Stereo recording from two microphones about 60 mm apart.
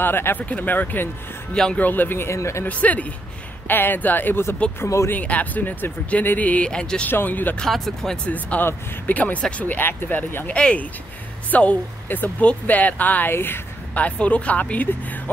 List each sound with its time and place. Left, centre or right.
0.0 s speech: left
1.5 s speech: centre
1.8 s speech: left
2.2 s speech: left
2.6 s speech: left
3.6 s speech: left
4.8 s speech: left
5.1 s speech: left
7.1 s speech: left
7.7 s speech: centre
8.3 s speech: left
13.3 s speech: left
13.9 s speech: left